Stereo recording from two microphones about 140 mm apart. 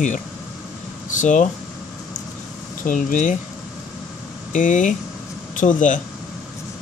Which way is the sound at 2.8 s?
70° left (ahead or behind).